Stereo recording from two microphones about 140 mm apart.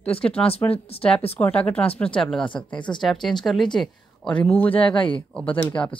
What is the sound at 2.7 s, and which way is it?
Speech, 35° left (ahead or behind).